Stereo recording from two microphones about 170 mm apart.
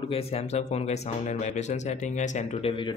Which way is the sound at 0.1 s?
35° left (ahead or behind).